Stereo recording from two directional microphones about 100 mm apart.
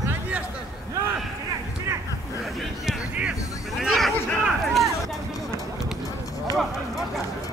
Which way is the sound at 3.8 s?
5° right (ahead or behind).